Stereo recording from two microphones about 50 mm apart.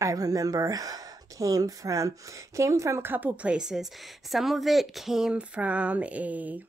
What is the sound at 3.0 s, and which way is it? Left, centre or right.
Speech, right.